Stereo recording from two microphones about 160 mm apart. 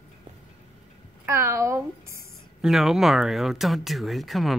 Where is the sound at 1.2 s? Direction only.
15° right (ahead or behind).